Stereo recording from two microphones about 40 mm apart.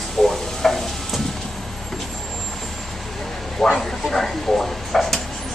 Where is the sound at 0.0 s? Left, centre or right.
Centre.